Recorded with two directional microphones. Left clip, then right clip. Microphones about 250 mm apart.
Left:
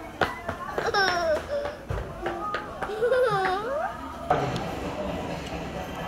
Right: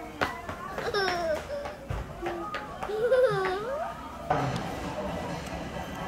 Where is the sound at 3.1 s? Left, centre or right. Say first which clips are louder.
Left 1 dB; centre.